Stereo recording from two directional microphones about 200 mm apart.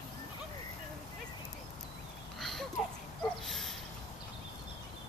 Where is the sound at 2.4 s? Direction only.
Centre (ahead or behind).